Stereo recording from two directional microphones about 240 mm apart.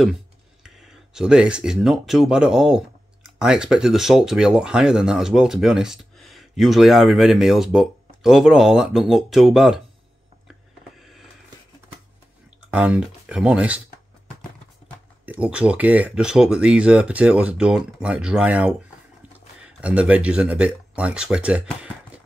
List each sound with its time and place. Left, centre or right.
0.7 s speech: centre
11.0 s music: centre
12.7 s a sound: centre
15.2 s speech: centre